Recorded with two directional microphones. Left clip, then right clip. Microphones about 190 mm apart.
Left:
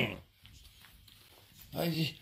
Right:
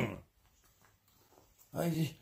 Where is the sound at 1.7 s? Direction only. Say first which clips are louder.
Left 2 dB; 15° right (ahead or behind).